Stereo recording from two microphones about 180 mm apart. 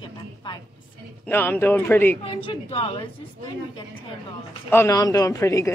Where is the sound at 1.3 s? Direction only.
10° left (ahead or behind).